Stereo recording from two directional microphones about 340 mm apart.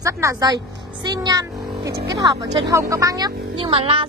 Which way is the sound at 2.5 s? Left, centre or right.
Centre.